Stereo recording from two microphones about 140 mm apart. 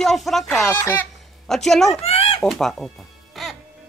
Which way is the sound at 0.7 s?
15° left (ahead or behind).